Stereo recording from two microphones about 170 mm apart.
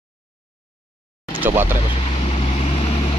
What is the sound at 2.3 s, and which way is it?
Vehicle, 35° left (ahead or behind).